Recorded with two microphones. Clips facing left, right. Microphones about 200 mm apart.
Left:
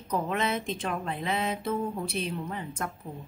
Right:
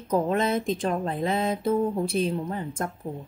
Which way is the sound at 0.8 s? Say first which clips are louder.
Right 6 dB; 35° right (ahead or behind).